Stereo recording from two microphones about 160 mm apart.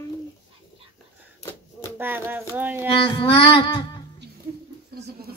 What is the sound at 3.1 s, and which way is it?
Child singing, 30° left (ahead or behind).